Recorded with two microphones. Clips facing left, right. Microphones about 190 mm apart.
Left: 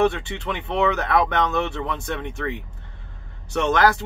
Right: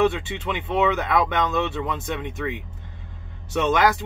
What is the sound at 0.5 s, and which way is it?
Speech, 15° right (ahead or behind).